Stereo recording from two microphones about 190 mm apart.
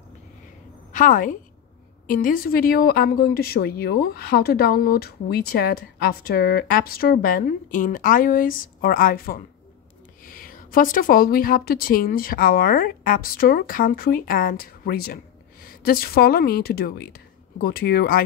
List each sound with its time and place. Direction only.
0.9 s speech: 45° left (ahead or behind)